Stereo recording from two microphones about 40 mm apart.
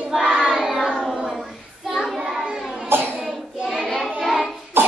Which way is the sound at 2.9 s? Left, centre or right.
Right.